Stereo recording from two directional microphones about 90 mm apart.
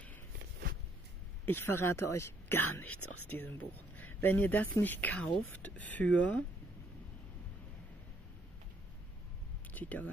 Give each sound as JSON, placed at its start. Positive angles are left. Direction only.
{"t": 1.4, "sound": "speech", "side_deg": 25}
{"t": 9.8, "sound": "speech", "side_deg": 15}